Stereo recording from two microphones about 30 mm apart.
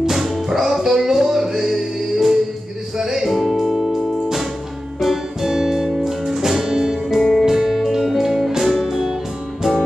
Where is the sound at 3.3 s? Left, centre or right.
Centre.